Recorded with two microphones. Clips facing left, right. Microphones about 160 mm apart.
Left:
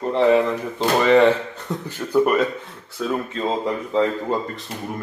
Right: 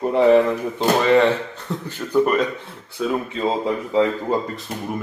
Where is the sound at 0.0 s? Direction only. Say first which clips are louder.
Right 2 dB; 10° right (ahead or behind).